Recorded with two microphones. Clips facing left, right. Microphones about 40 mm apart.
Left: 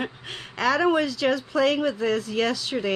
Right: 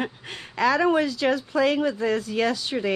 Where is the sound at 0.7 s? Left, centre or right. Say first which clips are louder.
Even; left.